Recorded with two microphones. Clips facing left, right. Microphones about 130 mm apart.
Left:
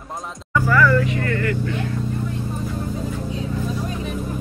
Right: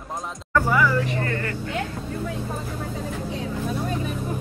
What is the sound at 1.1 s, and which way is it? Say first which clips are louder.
Vehicle: left 4 dB; 30° right (ahead or behind).